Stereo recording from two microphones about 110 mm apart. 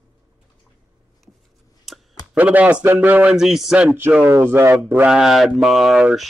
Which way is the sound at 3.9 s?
20° right (ahead or behind).